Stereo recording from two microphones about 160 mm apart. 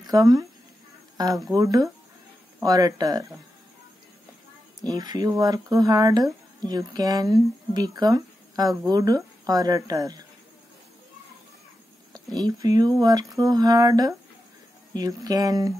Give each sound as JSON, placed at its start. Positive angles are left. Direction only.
{"t": 0.0, "sound": "speech", "side_deg": -20}
{"t": 4.8, "sound": "speech", "side_deg": -25}
{"t": 12.1, "sound": "speech", "side_deg": -25}